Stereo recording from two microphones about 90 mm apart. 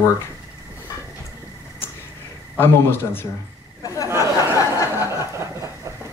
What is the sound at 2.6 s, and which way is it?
Speech, 25° left (ahead or behind).